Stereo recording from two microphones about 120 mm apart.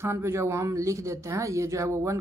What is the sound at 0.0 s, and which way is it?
Speech, 20° right (ahead or behind).